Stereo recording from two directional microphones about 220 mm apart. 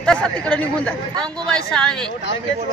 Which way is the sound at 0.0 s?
5° left (ahead or behind).